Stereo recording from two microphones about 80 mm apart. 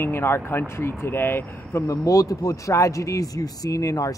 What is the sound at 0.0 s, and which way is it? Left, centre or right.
A man's voice, left.